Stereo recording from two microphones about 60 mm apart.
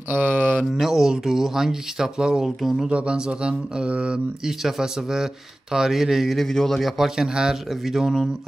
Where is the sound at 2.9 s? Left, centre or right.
Centre.